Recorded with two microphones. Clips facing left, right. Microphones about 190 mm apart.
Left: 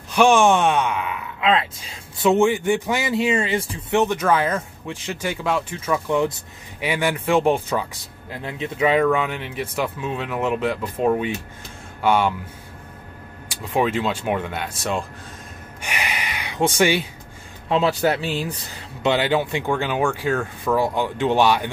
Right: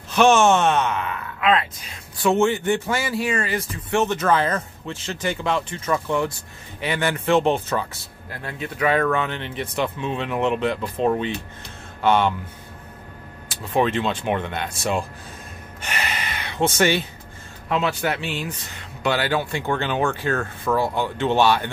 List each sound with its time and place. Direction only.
0.1 s a man's voice: 10° left (ahead or behind)
4.0 s speech: 10° left (ahead or behind)
13.5 s speech: 10° left (ahead or behind)
15.8 s speech: 10° left (ahead or behind)
17.6 s a man's voice: 30° left (ahead or behind)
19.0 s speech: 20° left (ahead or behind)